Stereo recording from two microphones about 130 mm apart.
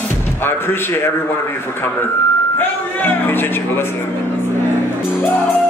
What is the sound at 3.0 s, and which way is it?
Speech, 15° left (ahead or behind).